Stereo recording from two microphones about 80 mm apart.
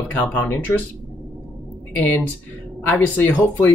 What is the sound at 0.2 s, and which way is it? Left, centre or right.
Speech, left.